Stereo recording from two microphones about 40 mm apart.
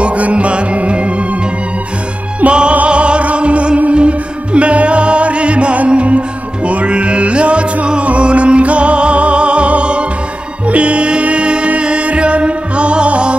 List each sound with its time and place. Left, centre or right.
0.0 s music: right
2.4 s music: right